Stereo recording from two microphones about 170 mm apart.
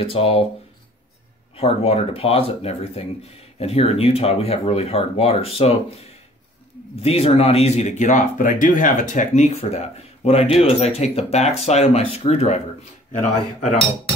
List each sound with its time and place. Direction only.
0.0 s speech: 35° left (ahead or behind)
1.6 s speech: 35° left (ahead or behind)
7.0 s speech: 35° left (ahead or behind)